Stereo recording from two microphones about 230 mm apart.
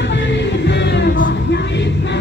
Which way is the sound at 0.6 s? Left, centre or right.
Left.